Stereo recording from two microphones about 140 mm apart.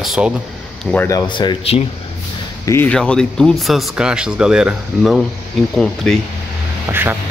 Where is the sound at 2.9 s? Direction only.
5° left (ahead or behind).